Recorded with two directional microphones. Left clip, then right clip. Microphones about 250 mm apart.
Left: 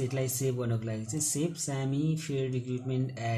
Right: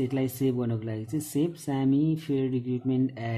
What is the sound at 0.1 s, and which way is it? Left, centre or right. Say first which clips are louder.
Speech: right 4 dB; right.